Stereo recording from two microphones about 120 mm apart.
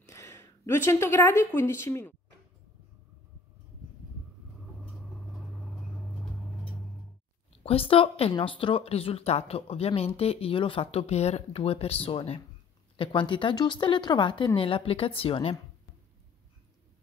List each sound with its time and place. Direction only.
0.1 s a woman's voice: 25° left (ahead or behind)
7.6 s speech: 50° left (ahead or behind)